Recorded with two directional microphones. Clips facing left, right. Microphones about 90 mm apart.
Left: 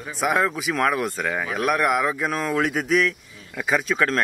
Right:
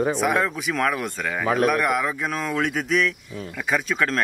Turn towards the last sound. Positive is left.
turn(degrees=0)  # may be behind; listen again after turning